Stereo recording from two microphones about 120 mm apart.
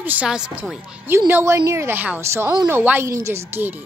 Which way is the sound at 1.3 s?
20° right (ahead or behind).